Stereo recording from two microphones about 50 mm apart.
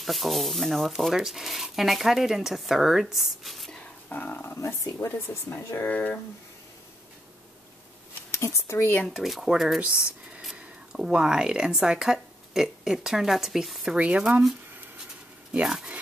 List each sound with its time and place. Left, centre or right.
0.0 s speech: centre
4.1 s speech: left
4.6 s speech: left
5.8 s speech: left
8.3 s speech: left
9.0 s speech: centre
9.8 s a woman's voice: right; by 13.8 s centre
13.9 s speech: right
15.6 s a woman's voice: centre